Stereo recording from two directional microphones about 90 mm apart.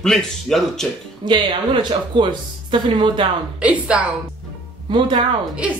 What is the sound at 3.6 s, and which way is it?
Speech, 15° right (ahead or behind).